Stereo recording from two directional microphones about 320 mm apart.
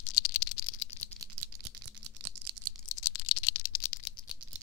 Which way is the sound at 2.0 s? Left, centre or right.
Right.